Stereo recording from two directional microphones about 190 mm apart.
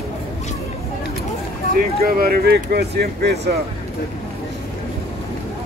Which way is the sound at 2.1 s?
55° right (ahead or behind).